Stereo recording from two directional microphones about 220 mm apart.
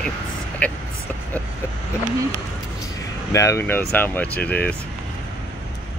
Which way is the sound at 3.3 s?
15° left (ahead or behind).